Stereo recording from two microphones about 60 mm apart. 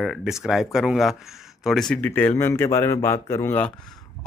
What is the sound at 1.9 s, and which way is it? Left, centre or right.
Speech, left.